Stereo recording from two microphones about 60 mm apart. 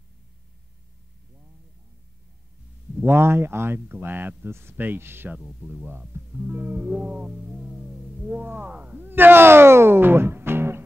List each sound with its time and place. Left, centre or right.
3.0 s speech: right
5.6 s speech: right
5.9 s speech: right